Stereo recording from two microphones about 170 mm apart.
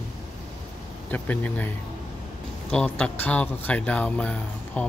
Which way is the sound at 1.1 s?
10° left (ahead or behind).